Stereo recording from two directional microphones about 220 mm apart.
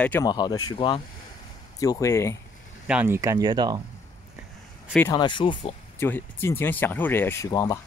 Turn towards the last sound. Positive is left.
turn(degrees=15)  # may be behind; listen again after turning